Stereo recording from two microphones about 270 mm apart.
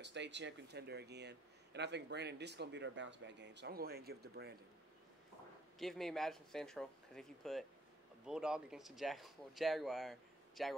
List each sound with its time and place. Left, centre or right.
0.0 s speech: right
5.8 s speech: centre